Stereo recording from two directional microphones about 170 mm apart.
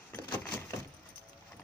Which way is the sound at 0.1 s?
15° left (ahead or behind).